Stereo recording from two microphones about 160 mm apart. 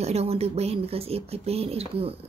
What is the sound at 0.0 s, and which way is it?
Speech, 40° right (ahead or behind).